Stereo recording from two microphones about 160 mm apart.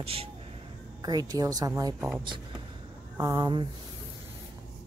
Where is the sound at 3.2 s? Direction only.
25° right (ahead or behind).